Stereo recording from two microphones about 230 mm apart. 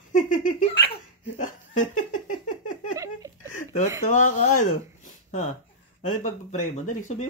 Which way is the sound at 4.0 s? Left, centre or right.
Left.